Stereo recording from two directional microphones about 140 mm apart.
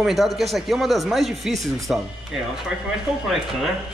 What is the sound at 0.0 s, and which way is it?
A man's voice, centre (ahead or behind).